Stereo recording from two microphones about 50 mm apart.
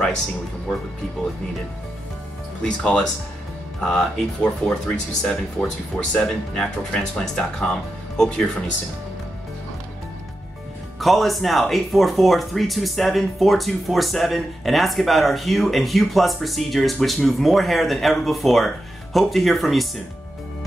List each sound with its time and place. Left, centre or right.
2.6 s speech: centre
11.0 s speech: centre